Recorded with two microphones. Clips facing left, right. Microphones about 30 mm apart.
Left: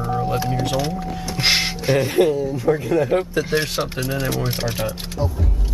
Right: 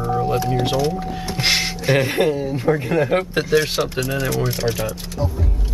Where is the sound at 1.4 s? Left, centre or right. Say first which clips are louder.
Left 1 dB; centre.